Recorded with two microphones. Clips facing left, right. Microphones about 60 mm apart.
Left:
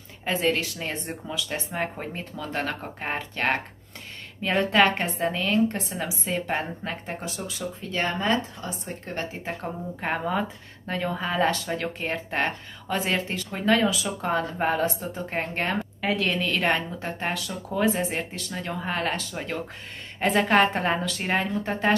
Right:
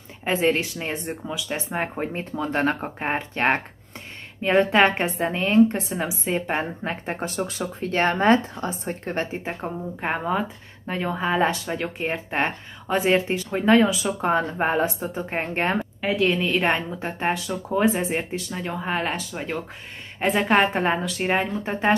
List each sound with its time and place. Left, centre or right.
0.2 s speech: right
7.1 s speech: right
9.5 s a woman's voice: centre
15.8 s a woman's voice: centre
20.5 s a woman's voice: centre